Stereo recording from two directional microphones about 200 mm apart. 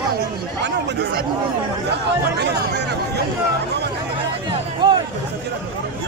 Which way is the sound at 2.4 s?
55° right (ahead or behind).